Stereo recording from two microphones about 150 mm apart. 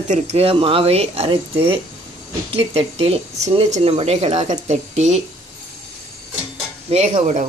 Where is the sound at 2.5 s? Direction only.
40° right (ahead or behind).